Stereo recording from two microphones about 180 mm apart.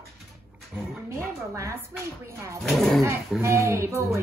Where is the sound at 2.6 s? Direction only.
Centre (ahead or behind).